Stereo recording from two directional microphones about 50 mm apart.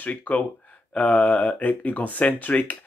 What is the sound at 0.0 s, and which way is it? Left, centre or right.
Speech, left.